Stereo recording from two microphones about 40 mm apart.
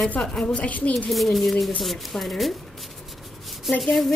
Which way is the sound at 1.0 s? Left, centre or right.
Centre.